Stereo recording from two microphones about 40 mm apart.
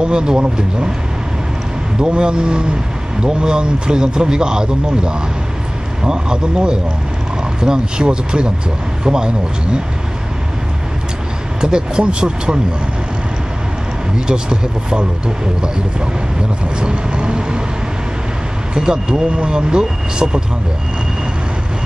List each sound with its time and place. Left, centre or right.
0.0 s speech: right
2.0 s speech: right
11.6 s speech: centre
14.1 s speech: centre
18.8 s speech: centre